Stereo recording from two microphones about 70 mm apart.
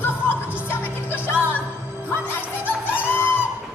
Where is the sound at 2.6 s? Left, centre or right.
Left.